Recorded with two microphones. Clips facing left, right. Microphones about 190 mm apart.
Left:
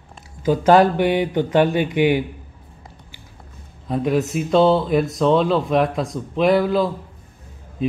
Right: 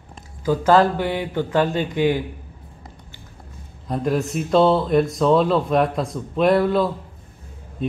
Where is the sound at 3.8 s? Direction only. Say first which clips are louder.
Left 2 dB; centre (ahead or behind).